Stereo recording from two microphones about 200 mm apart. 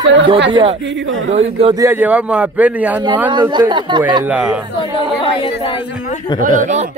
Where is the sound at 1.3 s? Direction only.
30° right (ahead or behind).